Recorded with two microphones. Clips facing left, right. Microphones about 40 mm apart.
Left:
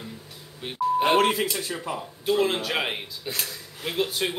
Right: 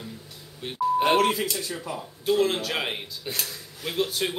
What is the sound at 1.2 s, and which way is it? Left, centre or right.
Speech, left.